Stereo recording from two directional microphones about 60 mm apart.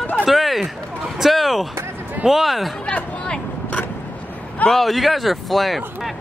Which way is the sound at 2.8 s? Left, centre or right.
Centre.